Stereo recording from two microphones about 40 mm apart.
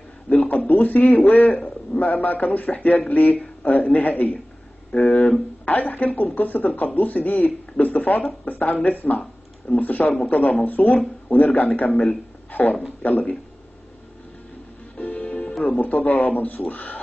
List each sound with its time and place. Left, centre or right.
0.3 s a man's voice: left
15.0 s music: left
15.6 s speech: left